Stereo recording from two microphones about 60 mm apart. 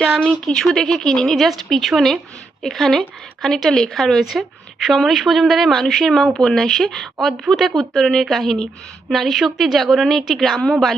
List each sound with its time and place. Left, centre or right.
0.2 s a woman's voice: centre